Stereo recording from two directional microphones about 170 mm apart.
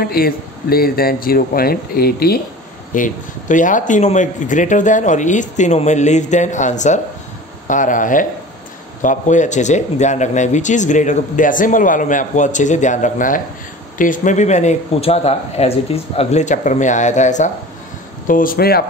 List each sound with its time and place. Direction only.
0.0 s speech: 60° left (ahead or behind)
2.9 s speech: 50° left (ahead or behind); by 18.9 s 65° left (ahead or behind)